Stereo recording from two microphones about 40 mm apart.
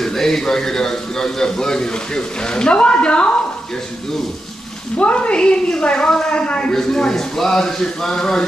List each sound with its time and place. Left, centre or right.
0.0 s a man's voice: centre; by 3.4 s left
4.9 s a woman's voice: left
6.7 s a man's voice: centre